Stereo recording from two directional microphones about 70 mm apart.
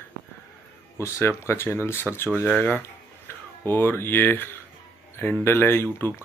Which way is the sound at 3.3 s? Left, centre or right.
Left.